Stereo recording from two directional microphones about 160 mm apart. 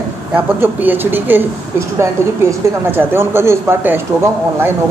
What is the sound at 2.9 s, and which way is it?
Speech, 15° right (ahead or behind).